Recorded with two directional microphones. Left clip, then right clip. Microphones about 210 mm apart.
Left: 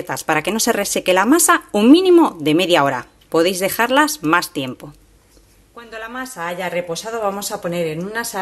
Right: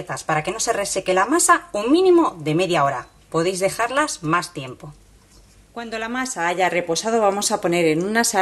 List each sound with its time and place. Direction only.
0.0 s speech: 40° left (ahead or behind)
5.8 s speech: 35° right (ahead or behind)